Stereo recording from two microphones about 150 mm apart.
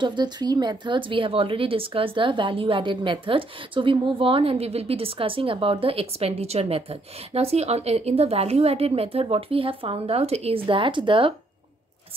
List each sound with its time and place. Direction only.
0.0 s speech: 30° right (ahead or behind)